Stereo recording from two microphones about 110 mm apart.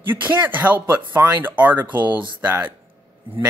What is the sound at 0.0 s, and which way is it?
Speech, 20° right (ahead or behind).